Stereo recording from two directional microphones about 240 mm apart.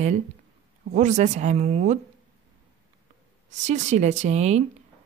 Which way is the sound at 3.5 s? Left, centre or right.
Right.